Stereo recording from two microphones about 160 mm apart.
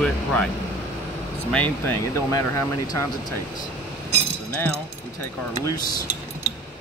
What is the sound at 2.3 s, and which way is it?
Speech, 20° left (ahead or behind).